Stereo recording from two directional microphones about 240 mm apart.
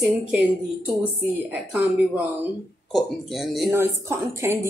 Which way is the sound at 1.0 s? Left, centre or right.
Centre.